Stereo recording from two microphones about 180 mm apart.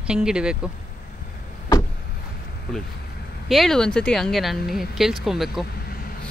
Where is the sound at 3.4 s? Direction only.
Centre (ahead or behind).